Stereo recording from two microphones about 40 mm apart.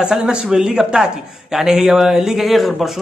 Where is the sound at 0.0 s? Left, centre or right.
Centre.